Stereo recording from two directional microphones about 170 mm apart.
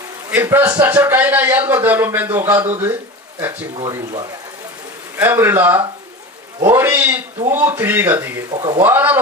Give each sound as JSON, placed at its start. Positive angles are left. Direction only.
{"t": 0.3, "sound": "a man's voice", "side_deg": -10}
{"t": 3.7, "sound": "speech", "side_deg": -25}
{"t": 5.1, "sound": "a man's voice", "side_deg": -15}
{"t": 8.5, "sound": "speech", "side_deg": -25}
{"t": 8.8, "sound": "a man's voice", "side_deg": -10}